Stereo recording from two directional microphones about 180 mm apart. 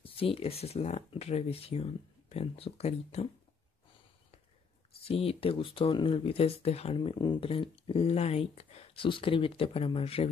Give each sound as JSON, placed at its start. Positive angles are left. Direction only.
{"t": 0.0, "sound": "speech", "side_deg": 30}
{"t": 5.0, "sound": "speech", "side_deg": 35}